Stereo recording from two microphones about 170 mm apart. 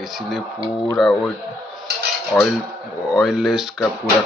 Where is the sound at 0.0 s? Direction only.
Centre (ahead or behind).